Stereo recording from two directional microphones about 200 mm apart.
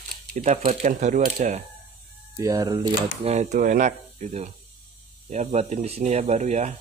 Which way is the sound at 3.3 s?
35° right (ahead or behind).